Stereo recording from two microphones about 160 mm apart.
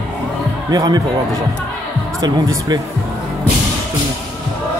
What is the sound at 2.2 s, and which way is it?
Speech, 25° right (ahead or behind).